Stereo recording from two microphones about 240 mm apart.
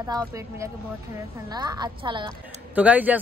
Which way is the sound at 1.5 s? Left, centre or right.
Centre.